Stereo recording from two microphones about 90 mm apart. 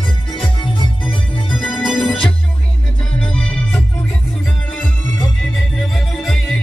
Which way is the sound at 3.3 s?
10° left (ahead or behind).